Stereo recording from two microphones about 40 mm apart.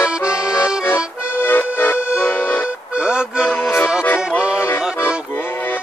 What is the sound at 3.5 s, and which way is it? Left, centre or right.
Accordion, left.